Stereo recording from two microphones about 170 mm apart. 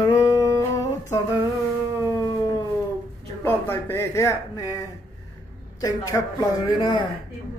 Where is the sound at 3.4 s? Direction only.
15° left (ahead or behind).